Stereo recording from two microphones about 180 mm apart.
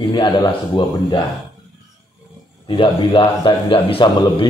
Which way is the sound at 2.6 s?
30° left (ahead or behind).